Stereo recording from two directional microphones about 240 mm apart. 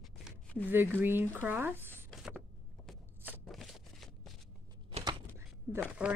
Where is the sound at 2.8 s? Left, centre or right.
Centre.